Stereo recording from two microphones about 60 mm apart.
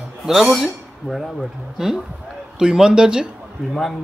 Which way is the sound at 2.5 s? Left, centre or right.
Centre.